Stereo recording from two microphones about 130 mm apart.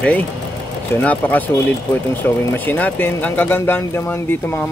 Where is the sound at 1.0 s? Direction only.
10° left (ahead or behind).